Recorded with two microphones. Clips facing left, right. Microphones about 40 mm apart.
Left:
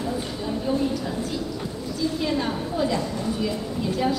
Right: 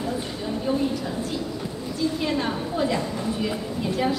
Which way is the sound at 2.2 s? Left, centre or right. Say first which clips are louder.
Even; centre.